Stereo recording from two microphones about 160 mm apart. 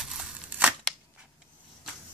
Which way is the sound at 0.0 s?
5° right (ahead or behind).